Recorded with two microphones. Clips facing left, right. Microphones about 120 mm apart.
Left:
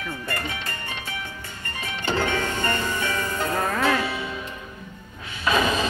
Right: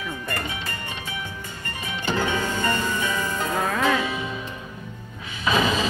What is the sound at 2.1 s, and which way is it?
Music, 15° right (ahead or behind).